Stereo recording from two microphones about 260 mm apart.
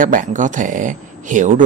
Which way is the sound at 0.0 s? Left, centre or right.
Right.